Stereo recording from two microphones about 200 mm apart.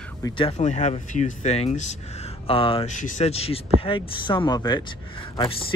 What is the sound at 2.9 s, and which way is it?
Speech, 40° left (ahead or behind).